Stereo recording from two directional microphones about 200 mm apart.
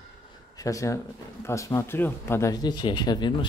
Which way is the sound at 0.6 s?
15° left (ahead or behind).